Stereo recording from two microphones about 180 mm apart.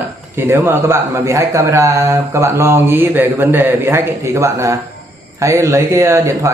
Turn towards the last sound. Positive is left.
turn(degrees=-15)  # may be behind; listen again after turning